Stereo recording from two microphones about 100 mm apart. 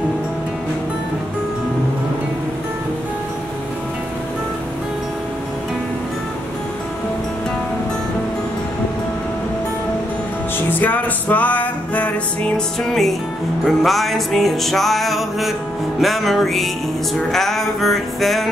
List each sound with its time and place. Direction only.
10.7 s music: 20° left (ahead or behind)
12.5 s music: 5° left (ahead or behind)